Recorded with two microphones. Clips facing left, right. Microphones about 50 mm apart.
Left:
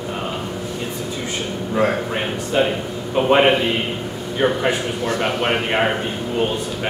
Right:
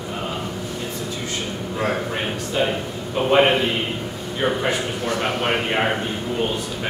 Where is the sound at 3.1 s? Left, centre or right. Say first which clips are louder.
Left 2 dB; centre.